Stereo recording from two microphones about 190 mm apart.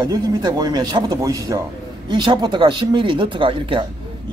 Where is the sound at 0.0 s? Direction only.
20° right (ahead or behind).